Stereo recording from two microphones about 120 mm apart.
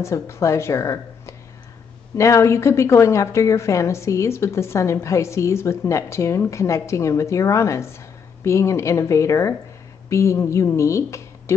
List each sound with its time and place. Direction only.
0.0 s a woman's voice: 25° left (ahead or behind)